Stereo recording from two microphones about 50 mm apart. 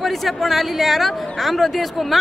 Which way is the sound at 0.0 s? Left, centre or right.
Centre.